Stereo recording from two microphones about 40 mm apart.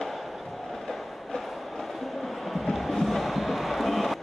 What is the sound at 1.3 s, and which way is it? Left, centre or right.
Train, centre.